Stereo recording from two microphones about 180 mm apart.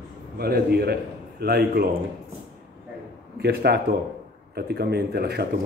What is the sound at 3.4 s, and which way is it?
Speech, 65° right (ahead or behind).